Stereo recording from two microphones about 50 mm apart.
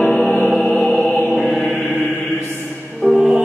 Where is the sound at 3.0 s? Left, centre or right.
Left.